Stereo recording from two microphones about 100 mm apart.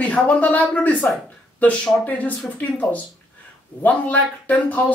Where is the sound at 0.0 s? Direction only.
15° left (ahead or behind).